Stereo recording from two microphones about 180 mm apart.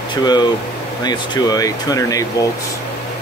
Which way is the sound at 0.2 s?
25° left (ahead or behind).